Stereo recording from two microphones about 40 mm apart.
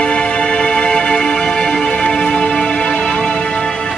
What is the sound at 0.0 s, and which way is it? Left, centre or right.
Music, left.